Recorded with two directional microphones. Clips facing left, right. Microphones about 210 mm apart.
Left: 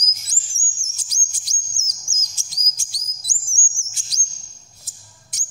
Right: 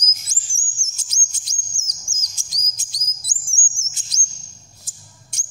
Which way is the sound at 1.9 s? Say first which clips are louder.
Even; 15° right (ahead or behind).